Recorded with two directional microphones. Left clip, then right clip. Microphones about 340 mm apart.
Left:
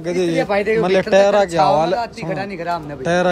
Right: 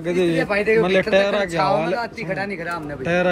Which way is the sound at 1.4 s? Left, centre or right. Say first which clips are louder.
Left 5 dB; left.